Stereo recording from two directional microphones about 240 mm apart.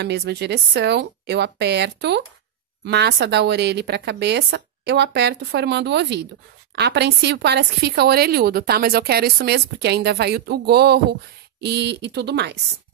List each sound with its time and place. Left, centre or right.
0.0 s a woman's voice: right